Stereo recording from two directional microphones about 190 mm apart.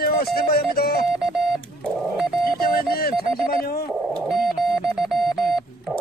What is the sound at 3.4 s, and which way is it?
Speech, 55° left (ahead or behind).